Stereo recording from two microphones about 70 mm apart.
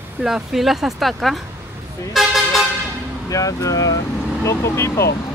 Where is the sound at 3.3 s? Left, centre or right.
Left.